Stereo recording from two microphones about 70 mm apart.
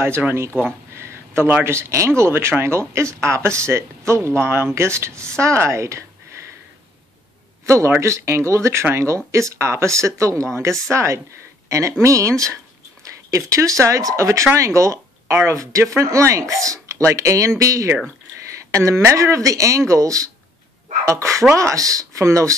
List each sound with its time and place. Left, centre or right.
0.9 s a sound: right
1.6 s speech: right
7.6 s speech: right